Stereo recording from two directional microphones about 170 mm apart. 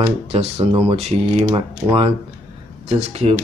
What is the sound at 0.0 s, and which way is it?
Speech, 35° right (ahead or behind).